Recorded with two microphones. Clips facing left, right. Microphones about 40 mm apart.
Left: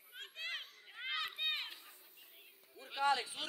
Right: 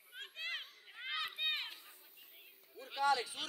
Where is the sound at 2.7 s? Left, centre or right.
Centre.